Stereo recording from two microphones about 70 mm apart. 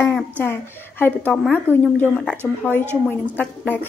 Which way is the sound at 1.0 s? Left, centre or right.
Left.